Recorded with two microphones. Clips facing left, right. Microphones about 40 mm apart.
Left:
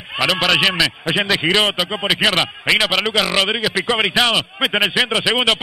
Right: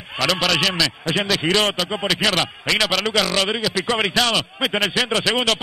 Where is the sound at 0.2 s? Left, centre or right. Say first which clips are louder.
Left 3 dB; left.